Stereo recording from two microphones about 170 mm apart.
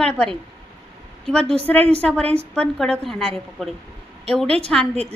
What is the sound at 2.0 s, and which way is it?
A woman's voice, 10° left (ahead or behind).